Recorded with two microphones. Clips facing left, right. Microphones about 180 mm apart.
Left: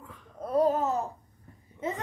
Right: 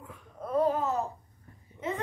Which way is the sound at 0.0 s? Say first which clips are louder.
Right 1 dB; 5° right (ahead or behind).